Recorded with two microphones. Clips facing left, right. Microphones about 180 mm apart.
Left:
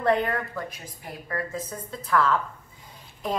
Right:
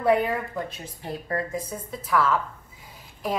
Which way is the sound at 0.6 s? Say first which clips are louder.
Right 3 dB; 25° right (ahead or behind).